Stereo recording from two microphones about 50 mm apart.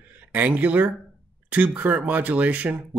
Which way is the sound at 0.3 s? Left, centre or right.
Right.